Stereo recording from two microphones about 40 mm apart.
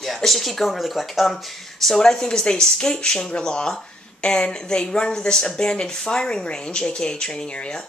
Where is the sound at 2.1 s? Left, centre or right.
Centre.